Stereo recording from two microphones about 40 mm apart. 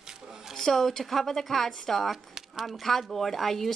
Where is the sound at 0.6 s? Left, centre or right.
Centre.